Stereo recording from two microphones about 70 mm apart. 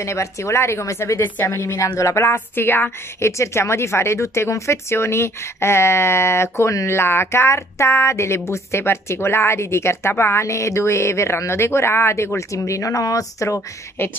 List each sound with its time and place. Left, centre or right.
0.0 s speech: left
2.3 s speech: left
3.3 s speech: left